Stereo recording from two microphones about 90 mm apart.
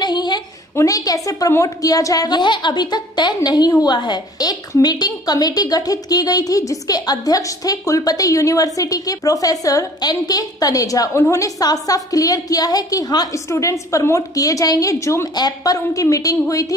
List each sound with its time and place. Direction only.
0.0 s a sound: 55° left (ahead or behind)
0.7 s a woman's voice: 40° left (ahead or behind)
15.3 s speech: 45° left (ahead or behind)